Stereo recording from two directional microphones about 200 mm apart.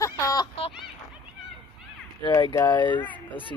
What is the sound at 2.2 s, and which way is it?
Speech, 20° left (ahead or behind).